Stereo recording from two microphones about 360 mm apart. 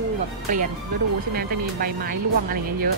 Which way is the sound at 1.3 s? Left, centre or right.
Right.